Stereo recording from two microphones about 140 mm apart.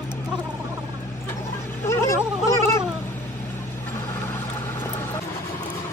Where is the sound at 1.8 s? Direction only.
20° left (ahead or behind).